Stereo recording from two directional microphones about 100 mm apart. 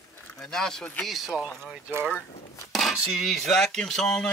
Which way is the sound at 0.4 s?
5° left (ahead or behind).